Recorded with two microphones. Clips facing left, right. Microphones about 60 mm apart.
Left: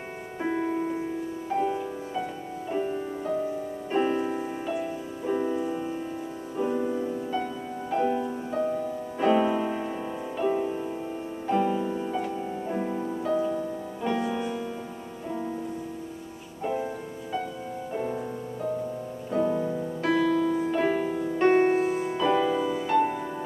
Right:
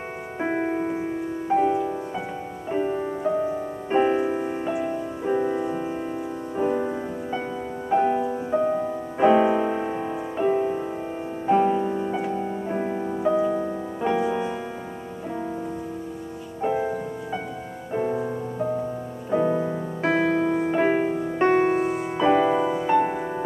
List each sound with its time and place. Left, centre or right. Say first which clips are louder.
0.4 s music: right 3 dB; right
4.4 s music: right 5 dB; right
5.3 s music: right 3 dB; right
16.6 s music: right 5 dB; right
21.6 s music: right 1 dB; centre
22.1 s music: right 7 dB; right